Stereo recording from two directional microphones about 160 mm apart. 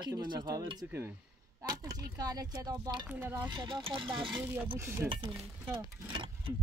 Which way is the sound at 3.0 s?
10° right (ahead or behind).